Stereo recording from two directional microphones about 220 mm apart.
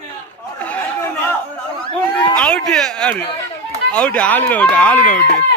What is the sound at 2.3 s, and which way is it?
Speech, 5° left (ahead or behind).